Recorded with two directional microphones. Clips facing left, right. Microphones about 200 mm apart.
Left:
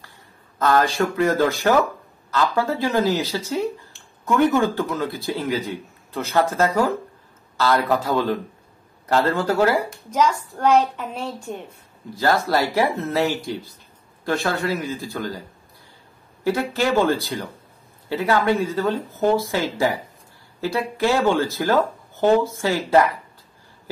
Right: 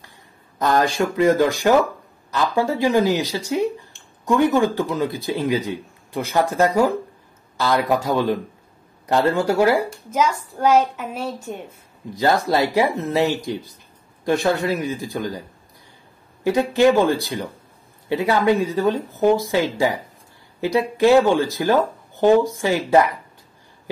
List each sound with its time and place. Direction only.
0.6 s speech: 15° right (ahead or behind)
10.1 s a woman's voice: centre (ahead or behind)
12.2 s speech: 20° right (ahead or behind)
16.4 s speech: 15° right (ahead or behind)